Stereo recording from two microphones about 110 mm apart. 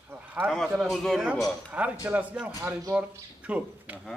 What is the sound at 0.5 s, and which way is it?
Speech, 5° left (ahead or behind).